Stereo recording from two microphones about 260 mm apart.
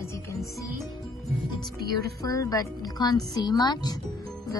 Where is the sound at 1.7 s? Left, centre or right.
Right.